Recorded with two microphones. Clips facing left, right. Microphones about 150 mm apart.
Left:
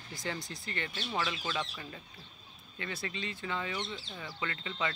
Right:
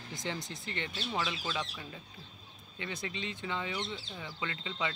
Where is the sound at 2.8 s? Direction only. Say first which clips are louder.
Even; 20° right (ahead or behind).